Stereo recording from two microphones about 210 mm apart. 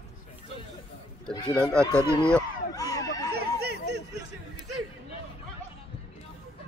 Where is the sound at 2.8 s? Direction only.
15° left (ahead or behind).